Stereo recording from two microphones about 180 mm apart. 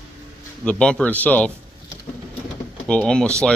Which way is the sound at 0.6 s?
5° left (ahead or behind).